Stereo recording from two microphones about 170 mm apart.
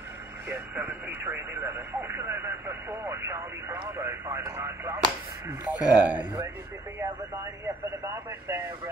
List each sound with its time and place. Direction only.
0.5 s radio: 10° right (ahead or behind)
7.6 s radio: 15° right (ahead or behind)